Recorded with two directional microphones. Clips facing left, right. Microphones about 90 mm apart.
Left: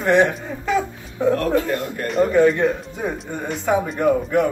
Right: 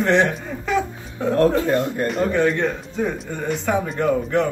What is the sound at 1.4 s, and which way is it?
Speech, 25° right (ahead or behind).